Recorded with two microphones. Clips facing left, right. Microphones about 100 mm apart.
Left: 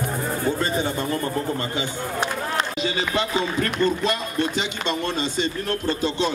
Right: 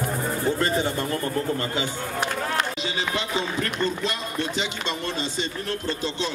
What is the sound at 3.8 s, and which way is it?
Speech, 50° left (ahead or behind).